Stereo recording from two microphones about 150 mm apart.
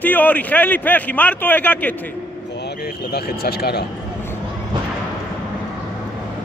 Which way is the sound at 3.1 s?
90° left.